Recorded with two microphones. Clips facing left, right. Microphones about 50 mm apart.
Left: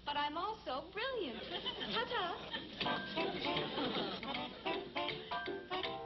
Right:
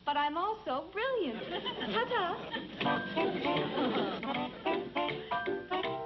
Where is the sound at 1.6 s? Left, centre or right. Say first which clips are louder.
Right 6 dB; right.